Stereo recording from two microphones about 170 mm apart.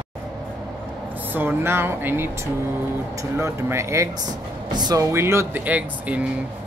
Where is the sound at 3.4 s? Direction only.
15° right (ahead or behind).